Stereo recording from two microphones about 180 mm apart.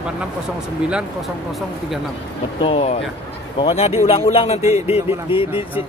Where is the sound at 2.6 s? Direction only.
35° left (ahead or behind).